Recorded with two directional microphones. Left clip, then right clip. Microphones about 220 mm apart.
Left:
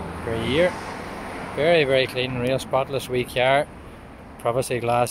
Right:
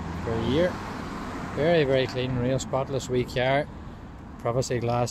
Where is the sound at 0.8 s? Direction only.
50° right (ahead or behind).